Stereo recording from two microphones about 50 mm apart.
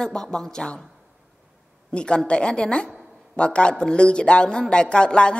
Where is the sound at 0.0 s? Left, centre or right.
Centre.